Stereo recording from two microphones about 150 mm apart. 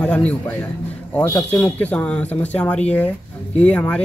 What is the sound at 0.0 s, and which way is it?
Speech, 5° left (ahead or behind).